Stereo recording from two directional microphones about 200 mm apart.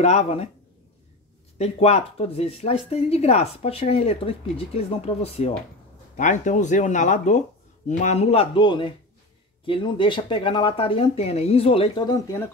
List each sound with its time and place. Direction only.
0.0 s speech: 35° left (ahead or behind)
1.6 s speech: 30° left (ahead or behind)